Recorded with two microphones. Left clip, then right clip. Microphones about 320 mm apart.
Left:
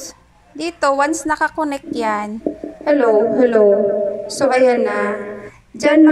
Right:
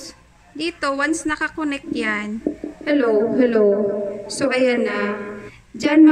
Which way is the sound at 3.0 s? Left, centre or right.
Left.